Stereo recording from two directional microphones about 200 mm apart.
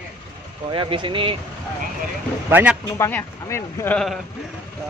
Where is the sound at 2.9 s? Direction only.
15° left (ahead or behind).